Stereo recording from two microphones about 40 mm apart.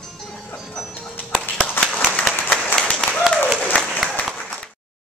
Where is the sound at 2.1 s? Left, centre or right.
Left.